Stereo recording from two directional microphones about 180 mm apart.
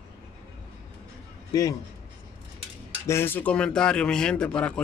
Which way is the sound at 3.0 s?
15° left (ahead or behind).